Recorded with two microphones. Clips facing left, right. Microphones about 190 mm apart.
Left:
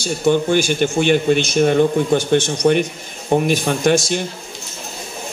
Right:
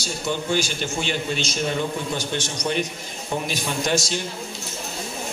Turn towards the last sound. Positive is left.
turn(degrees=55)  # may be behind; listen again after turning